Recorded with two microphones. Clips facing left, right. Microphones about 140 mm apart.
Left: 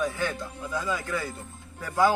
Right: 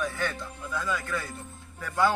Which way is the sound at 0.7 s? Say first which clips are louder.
Left 1 dB; 20° left (ahead or behind).